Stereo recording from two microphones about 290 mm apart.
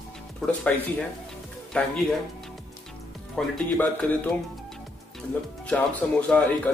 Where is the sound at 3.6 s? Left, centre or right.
Centre.